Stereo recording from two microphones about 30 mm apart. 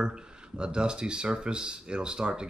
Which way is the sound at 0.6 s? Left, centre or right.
Right.